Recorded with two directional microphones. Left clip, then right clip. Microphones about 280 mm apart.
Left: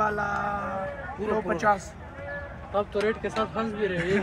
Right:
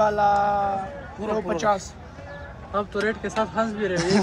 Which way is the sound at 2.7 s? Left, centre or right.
Right.